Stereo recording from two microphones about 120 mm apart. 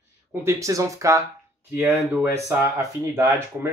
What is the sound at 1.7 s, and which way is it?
Speech, 15° right (ahead or behind).